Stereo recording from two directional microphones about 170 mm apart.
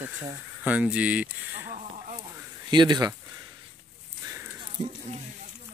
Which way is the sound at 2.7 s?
25° right (ahead or behind).